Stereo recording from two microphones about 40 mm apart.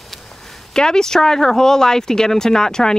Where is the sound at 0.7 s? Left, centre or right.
Centre.